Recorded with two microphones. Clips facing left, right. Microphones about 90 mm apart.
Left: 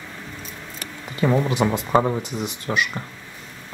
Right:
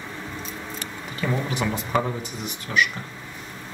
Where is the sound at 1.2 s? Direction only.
30° left (ahead or behind).